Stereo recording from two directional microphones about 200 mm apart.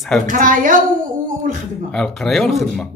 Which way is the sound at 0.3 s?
40° right (ahead or behind).